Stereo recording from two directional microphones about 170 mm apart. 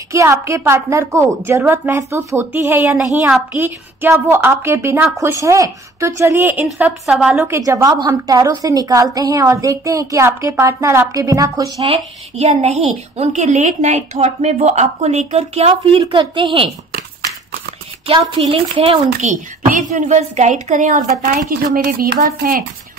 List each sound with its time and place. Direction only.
0.1 s a woman's voice: 15° right (ahead or behind)
6.6 s a woman's voice: 5° right (ahead or behind)
7.4 s a woman's voice: 15° right (ahead or behind)
11.8 s a woman's voice: 40° right (ahead or behind)
15.7 s a woman's voice: 30° right (ahead or behind)
18.0 s a woman's voice: 35° right (ahead or behind)
19.0 s a woman's voice: 50° right (ahead or behind); by 22.7 s 70° right (ahead or behind)